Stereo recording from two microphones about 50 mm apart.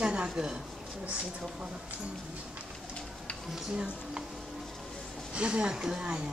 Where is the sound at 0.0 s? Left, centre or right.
Centre.